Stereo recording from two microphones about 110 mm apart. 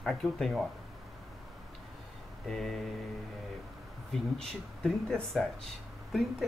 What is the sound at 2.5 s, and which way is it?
Speech, 5° left (ahead or behind).